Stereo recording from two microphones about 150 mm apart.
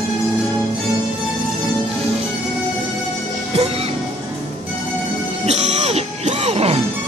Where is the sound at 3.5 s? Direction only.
40° right (ahead or behind).